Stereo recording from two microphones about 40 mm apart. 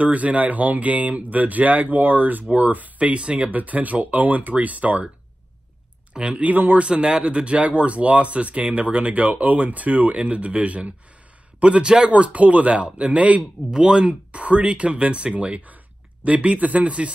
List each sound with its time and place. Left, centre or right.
0.0 s speech: right
6.1 s speech: right
6.4 s speech: right
6.8 s speech: right
11.8 s speech: right
12.1 s speech: right
13.7 s speech: right